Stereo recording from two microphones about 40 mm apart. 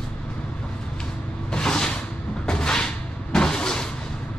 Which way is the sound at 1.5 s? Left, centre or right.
Centre.